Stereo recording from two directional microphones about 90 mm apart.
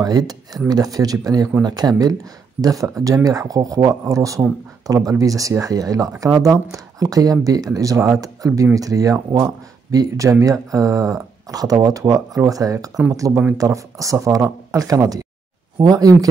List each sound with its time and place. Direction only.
0.0 s speech: 45° right (ahead or behind)